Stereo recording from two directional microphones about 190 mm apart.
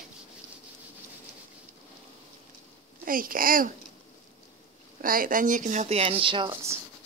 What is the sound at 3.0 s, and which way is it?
Speech, 50° right (ahead or behind).